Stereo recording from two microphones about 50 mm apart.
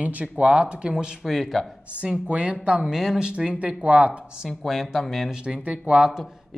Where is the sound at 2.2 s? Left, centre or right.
Right.